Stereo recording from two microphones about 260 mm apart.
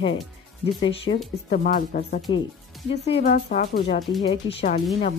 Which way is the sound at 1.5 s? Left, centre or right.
Left.